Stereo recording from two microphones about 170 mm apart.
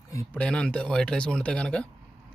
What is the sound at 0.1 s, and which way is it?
Speech, 15° left (ahead or behind).